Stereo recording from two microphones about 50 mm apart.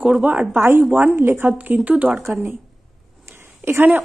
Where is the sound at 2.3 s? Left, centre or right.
Right.